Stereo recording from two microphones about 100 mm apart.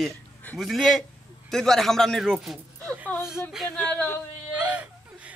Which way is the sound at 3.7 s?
10° left (ahead or behind).